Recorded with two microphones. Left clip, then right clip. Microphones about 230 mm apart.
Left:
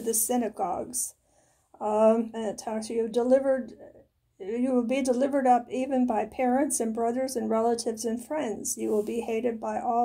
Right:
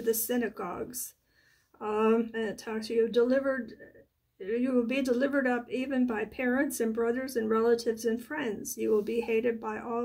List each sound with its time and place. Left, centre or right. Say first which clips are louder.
0.0 s speech: left 1 dB; centre